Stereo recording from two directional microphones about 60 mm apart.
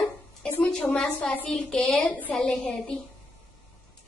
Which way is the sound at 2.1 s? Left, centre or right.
Left.